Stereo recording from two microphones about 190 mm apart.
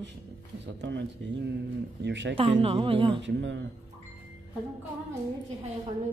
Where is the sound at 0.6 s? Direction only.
65° right (ahead or behind).